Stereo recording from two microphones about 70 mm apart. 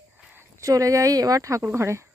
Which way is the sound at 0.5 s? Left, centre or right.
Right.